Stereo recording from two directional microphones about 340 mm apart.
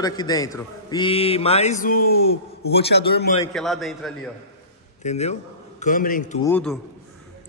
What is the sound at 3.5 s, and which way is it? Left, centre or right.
Speech, centre.